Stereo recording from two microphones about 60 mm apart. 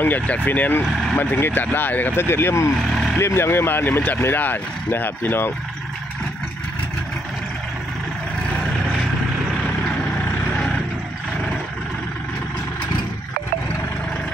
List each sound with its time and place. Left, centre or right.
0.0 s speech: left
2.2 s speech: left
2.9 s vehicle: centre
3.2 s speech: left